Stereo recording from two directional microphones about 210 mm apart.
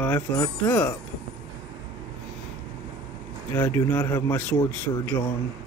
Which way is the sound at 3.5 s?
10° left (ahead or behind).